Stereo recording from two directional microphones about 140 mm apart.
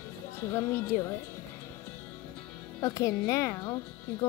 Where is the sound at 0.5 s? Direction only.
15° left (ahead or behind).